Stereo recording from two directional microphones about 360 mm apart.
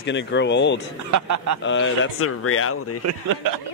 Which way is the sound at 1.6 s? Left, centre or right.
Left.